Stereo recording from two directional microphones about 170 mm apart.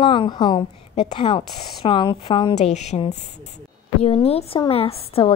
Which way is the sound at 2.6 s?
40° left (ahead or behind).